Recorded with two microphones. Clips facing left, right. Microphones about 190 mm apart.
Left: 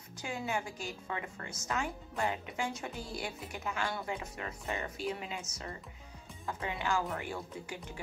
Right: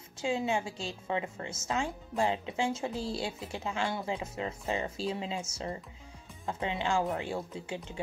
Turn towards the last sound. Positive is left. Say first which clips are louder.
# right 4 dB
turn(degrees=-25)  # may be behind; listen again after turning